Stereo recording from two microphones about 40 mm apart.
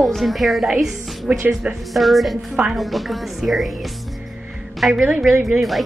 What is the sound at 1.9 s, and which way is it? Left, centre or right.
Speech, centre.